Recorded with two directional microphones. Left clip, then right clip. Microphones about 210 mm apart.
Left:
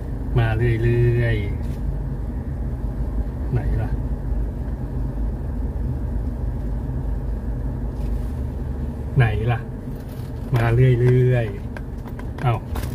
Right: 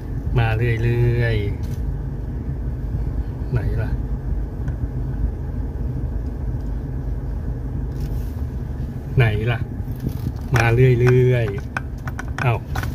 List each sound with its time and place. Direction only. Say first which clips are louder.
0.4 s speech: right 1 dB; 35° right (ahead or behind)
9.1 s a sound: right 2 dB; 50° right (ahead or behind)
10.6 s speech: right 3 dB; 50° right (ahead or behind)